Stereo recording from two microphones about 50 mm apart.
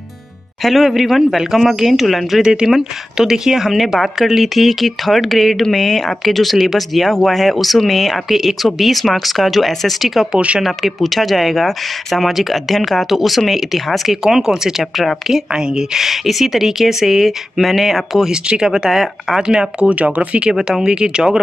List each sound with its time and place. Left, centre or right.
0.6 s speech: centre
2.4 s speech: centre
10.3 s speech: right
10.6 s speech: centre
18.3 s speech: centre
19.4 s speech: centre